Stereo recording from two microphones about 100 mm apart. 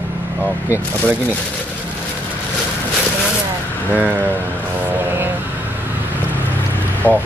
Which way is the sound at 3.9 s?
15° right (ahead or behind).